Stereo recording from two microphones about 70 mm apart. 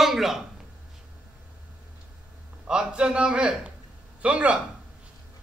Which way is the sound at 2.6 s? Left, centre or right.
Centre.